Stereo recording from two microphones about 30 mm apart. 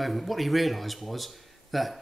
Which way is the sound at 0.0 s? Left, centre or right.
Centre.